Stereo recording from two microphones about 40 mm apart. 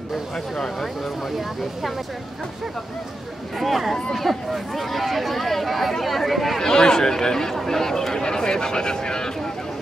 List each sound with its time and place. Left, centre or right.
0.6 s speech: centre
3.5 s speech: centre
6.6 s speech: centre